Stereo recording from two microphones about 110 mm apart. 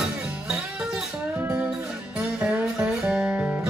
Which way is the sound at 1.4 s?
20° right (ahead or behind).